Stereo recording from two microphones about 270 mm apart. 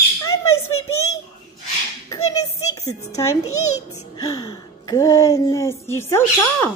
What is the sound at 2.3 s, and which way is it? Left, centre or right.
Speech, centre.